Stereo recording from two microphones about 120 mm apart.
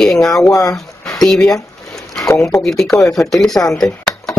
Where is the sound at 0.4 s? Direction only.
25° left (ahead or behind).